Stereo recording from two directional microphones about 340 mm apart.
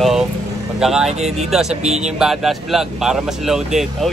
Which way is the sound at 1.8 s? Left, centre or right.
Centre.